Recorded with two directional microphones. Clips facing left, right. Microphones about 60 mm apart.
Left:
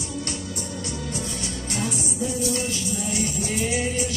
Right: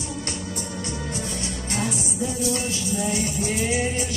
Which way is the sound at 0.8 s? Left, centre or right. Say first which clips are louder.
Even; right.